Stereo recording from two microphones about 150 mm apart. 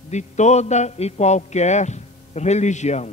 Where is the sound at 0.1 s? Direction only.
50° left (ahead or behind).